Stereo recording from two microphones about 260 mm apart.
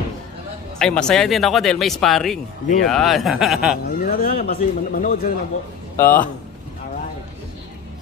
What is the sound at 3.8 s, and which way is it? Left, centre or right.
Speech, left.